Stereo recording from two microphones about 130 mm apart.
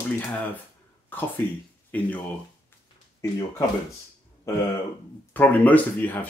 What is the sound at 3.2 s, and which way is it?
Speech, 25° left (ahead or behind).